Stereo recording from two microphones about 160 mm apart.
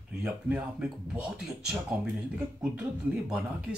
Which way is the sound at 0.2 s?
10° right (ahead or behind).